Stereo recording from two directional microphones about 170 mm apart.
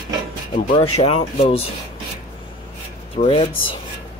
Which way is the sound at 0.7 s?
35° left (ahead or behind).